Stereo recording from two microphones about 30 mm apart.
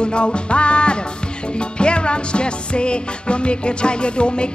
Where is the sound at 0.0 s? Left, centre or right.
Left.